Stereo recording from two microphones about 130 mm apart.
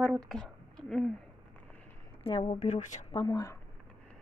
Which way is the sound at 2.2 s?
50° left (ahead or behind).